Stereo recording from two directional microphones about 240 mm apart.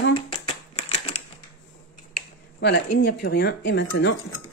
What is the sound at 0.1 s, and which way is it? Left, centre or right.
Shuffling cards, left.